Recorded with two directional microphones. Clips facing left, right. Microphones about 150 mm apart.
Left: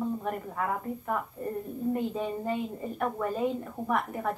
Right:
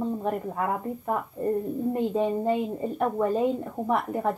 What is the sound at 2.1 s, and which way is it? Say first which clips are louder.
A woman's voice: right 7 dB; 30° right (ahead or behind).